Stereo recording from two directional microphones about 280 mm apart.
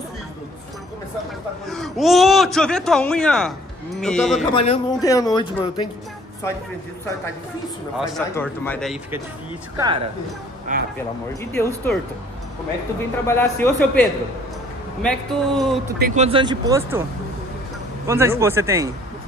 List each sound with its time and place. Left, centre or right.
1.7 s speech: centre
4.6 s speech: centre
8.0 s speech: centre
9.8 s speech: centre
10.7 s speech: right
11.5 s speech: centre
13.3 s speech: centre
16.0 s speech: right
18.0 s speech: centre